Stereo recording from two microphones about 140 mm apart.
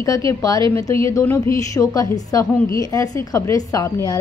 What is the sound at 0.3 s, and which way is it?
A woman's voice, 25° left (ahead or behind).